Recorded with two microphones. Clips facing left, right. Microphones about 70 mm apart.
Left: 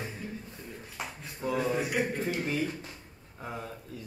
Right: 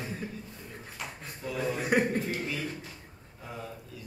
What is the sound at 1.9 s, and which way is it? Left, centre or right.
Speech, right.